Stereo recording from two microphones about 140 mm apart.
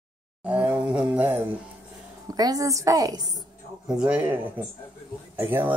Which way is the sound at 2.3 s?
25° right (ahead or behind).